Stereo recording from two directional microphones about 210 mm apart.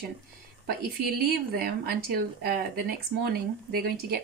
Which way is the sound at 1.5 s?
45° right (ahead or behind).